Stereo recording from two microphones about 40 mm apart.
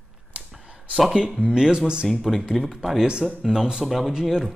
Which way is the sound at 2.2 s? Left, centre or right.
Centre.